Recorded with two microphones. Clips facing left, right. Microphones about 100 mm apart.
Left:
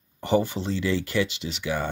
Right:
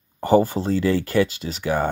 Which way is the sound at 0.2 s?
45° right (ahead or behind).